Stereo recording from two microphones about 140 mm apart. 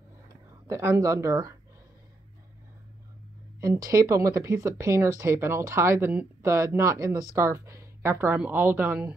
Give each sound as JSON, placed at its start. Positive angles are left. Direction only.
{"t": 0.7, "sound": "speech", "side_deg": -20}
{"t": 3.6, "sound": "speech", "side_deg": -25}